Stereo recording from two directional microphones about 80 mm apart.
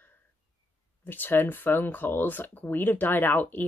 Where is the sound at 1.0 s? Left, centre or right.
Left.